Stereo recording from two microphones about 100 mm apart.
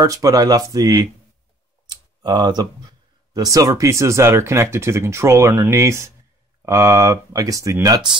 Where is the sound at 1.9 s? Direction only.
45° right (ahead or behind).